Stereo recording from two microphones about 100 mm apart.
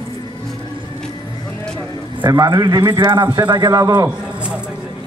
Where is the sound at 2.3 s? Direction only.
40° right (ahead or behind).